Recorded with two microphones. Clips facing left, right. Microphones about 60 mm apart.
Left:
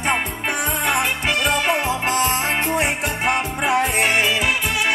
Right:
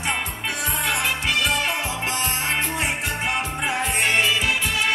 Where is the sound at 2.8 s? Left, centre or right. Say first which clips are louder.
Left 4 dB; left.